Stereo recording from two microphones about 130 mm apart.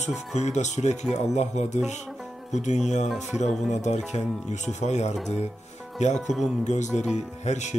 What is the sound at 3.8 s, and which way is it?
Speech, 60° left (ahead or behind).